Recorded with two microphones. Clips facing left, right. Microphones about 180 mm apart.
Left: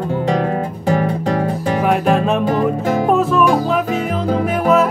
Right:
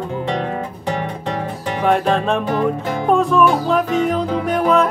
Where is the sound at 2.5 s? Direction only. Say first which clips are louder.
Left 3 dB; 40° left (ahead or behind).